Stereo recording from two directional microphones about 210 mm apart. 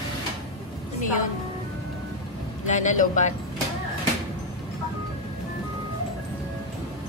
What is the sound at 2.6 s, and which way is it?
Speech, 35° left (ahead or behind).